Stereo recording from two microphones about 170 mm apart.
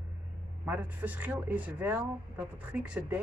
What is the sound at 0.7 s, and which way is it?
Speech, 10° right (ahead or behind).